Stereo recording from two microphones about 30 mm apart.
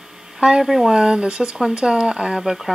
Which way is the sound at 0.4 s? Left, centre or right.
Centre.